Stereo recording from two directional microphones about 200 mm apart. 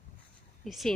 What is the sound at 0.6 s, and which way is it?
Speech, centre (ahead or behind).